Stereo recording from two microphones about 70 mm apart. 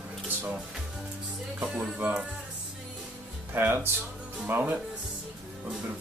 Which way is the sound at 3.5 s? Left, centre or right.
Right.